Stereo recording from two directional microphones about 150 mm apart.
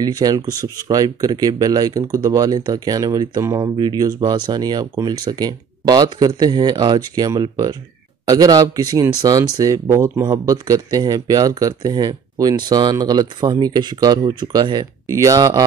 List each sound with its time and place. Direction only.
0.0 s speech: 25° right (ahead or behind)